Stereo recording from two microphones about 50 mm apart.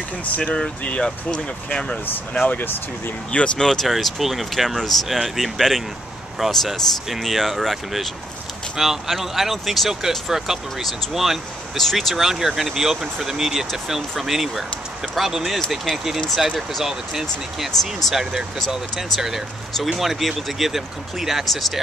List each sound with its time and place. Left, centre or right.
0.8 s speech: left
2.5 s speech: left
3.3 s speech: centre
3.6 s speech: centre